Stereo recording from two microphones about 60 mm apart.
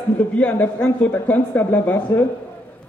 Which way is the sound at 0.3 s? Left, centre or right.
Left.